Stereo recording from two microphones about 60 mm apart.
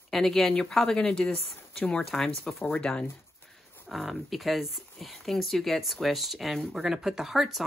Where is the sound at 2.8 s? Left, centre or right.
Centre.